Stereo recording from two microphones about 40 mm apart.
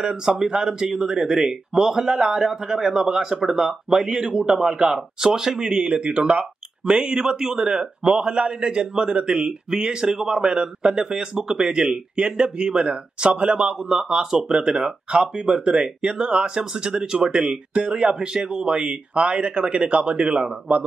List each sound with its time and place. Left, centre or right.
0.0 s a man's voice: centre
5.8 s a man's voice: right
14.6 s a man's voice: right